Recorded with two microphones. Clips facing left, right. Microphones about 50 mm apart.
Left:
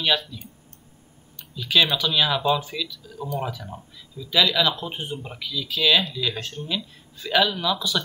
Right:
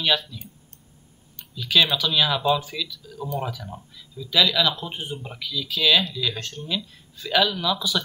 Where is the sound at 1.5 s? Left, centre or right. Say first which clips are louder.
Even; centre.